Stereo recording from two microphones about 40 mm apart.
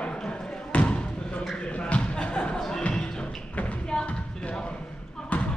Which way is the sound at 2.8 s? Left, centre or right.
Left.